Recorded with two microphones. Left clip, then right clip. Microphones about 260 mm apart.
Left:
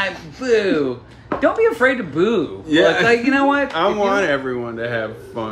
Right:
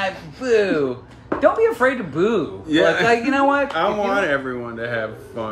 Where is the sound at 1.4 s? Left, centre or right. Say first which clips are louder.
Left 1 dB; centre.